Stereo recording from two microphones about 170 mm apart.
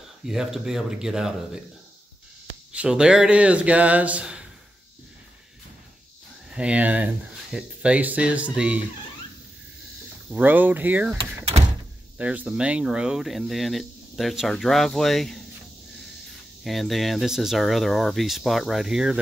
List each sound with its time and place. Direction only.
0.2 s speech: 5° right (ahead or behind)
2.7 s speech: 5° right (ahead or behind)
6.5 s speech: 5° right (ahead or behind)
10.3 s speech: 10° right (ahead or behind)
11.6 s door: 40° right (ahead or behind)
12.2 s speech: 10° right (ahead or behind)
16.6 s speech: centre (ahead or behind)